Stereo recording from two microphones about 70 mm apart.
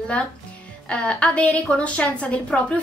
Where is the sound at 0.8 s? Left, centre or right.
Centre.